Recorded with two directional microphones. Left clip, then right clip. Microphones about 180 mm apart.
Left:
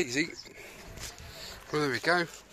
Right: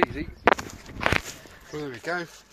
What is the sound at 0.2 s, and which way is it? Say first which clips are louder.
Speech: left 5 dB; 55° left (ahead or behind).